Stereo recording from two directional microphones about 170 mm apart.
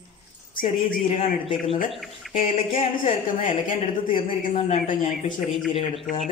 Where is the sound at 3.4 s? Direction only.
50° left (ahead or behind).